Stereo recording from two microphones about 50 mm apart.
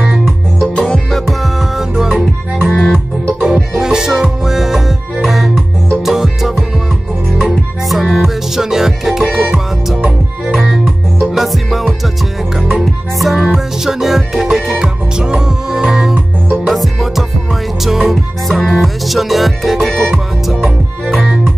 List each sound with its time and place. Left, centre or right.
0.9 s music: centre
2.1 s music: centre
3.5 s music: centre
7.3 s music: centre
8.0 s music: centre
10.5 s music: centre